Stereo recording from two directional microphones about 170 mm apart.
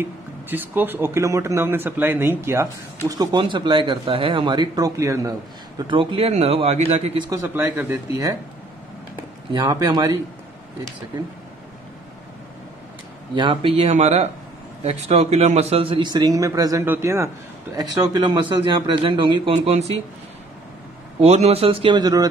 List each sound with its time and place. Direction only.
0.0 s speech: 10° right (ahead or behind)
5.8 s speech: 30° right (ahead or behind)
7.2 s speech: 15° right (ahead or behind)
9.5 s a man's voice: 20° right (ahead or behind)
13.3 s a man's voice: 30° right (ahead or behind)
21.2 s speech: 40° right (ahead or behind); by 22.3 s 20° right (ahead or behind)